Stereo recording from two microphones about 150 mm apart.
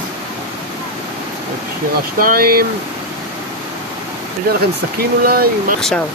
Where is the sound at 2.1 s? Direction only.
75° right (ahead or behind).